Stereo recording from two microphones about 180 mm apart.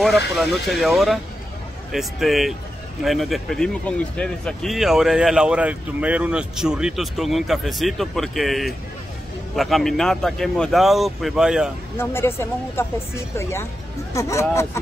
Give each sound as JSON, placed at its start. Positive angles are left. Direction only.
{"t": 0.4, "sound": "speech", "side_deg": 0}
{"t": 12.0, "sound": "speech", "side_deg": 15}